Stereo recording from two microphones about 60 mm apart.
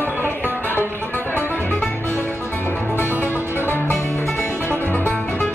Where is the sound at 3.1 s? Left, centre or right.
Right.